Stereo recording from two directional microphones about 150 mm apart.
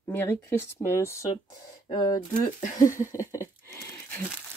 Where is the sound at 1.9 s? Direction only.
30° left (ahead or behind).